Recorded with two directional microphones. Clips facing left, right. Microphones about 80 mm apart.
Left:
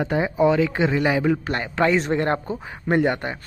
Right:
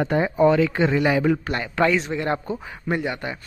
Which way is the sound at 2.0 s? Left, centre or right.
Left.